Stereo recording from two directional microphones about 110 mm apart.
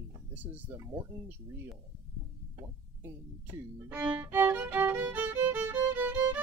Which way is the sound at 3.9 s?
15° right (ahead or behind).